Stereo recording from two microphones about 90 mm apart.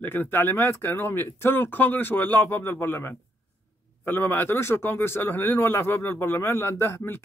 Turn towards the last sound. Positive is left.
turn(degrees=25)  # may be behind; listen again after turning